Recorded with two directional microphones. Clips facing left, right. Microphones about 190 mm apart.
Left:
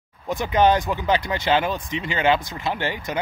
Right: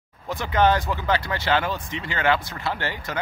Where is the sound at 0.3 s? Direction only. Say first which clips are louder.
Left 2 dB; 15° left (ahead or behind).